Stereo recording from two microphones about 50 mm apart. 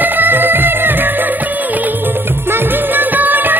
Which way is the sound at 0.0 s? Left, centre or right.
Right.